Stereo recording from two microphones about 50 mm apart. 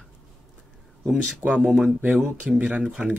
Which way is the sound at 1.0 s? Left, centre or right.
Centre.